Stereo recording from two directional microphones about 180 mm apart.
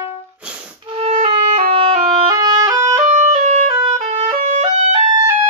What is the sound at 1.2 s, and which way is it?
Music, 25° right (ahead or behind).